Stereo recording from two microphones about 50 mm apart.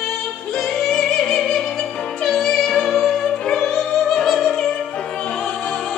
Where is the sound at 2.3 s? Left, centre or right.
Centre.